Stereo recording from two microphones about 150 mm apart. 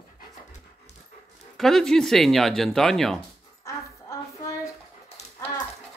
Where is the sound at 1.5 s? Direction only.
Centre (ahead or behind).